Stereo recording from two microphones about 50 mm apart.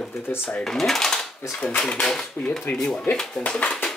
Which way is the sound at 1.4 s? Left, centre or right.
Left.